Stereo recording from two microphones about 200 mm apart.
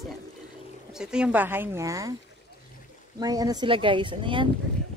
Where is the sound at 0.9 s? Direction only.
5° right (ahead or behind).